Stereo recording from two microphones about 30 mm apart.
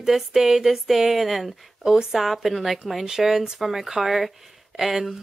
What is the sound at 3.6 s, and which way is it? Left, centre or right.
Speech, centre.